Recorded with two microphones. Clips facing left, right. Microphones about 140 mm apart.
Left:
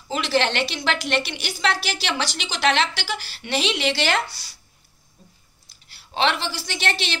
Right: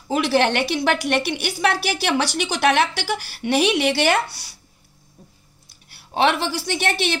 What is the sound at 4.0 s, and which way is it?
Speech, 65° right (ahead or behind).